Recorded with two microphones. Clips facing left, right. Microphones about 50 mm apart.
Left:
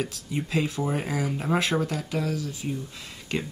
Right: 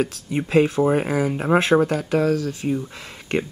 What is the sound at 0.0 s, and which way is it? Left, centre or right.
Speech, right.